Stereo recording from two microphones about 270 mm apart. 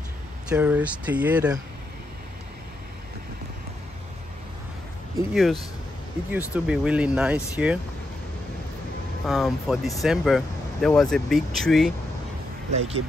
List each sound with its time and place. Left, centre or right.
0.5 s speech: centre
5.3 s speech: centre
9.2 s speech: centre
12.7 s speech: right